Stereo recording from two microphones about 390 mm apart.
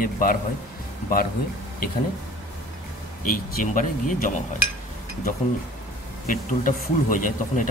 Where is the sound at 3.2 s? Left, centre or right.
Centre.